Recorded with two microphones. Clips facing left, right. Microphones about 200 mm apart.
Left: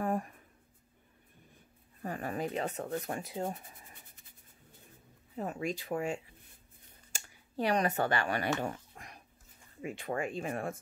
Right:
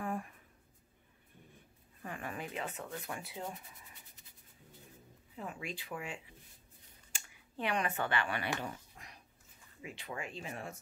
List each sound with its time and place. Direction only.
0.0 s writing: 40° left (ahead or behind)
2.0 s speech: 40° left (ahead or behind)
5.3 s speech: 40° left (ahead or behind)
7.1 s a sound: 40° left (ahead or behind)
9.8 s speech: 50° left (ahead or behind)